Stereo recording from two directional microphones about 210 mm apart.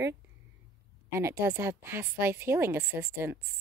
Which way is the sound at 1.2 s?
10° right (ahead or behind).